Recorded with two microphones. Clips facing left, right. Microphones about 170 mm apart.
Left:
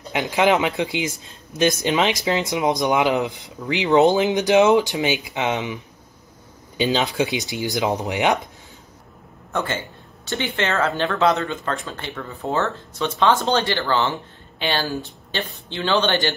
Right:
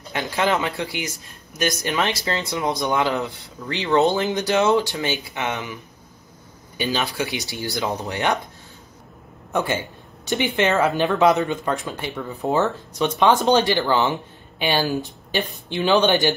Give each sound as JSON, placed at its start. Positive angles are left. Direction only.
{"t": 0.1, "sound": "speech", "side_deg": 15}
{"t": 6.8, "sound": "speech", "side_deg": 20}
{"t": 9.5, "sound": "speech", "side_deg": -10}